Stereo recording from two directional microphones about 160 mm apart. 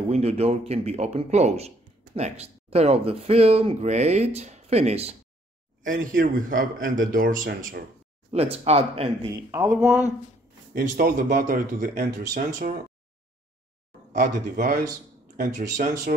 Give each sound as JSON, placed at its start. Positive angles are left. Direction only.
{"t": 0.1, "sound": "speech", "side_deg": -40}
{"t": 5.9, "sound": "speech", "side_deg": -60}
{"t": 8.3, "sound": "speech", "side_deg": -40}
{"t": 9.5, "sound": "speech", "side_deg": -15}
{"t": 10.7, "sound": "speech", "side_deg": -60}
{"t": 14.1, "sound": "speech", "side_deg": -60}